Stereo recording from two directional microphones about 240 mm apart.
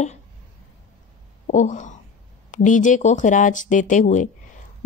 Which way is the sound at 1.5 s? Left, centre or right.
Left.